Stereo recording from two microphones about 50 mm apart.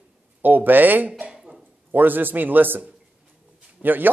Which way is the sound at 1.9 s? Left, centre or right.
Right.